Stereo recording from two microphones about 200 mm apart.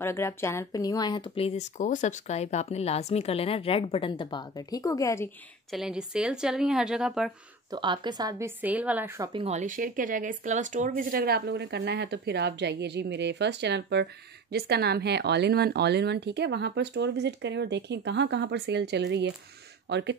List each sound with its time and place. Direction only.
0.0 s speech: 10° left (ahead or behind)
5.7 s speech: 5° right (ahead or behind)
7.7 s a woman's voice: 25° right (ahead or behind)
9.3 s speech: 30° right (ahead or behind); by 20.2 s 60° right (ahead or behind)